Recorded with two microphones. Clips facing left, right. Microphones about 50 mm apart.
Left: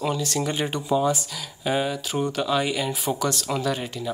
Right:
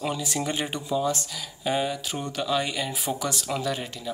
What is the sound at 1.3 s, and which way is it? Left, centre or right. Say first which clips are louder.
Speech: left 2 dB; centre.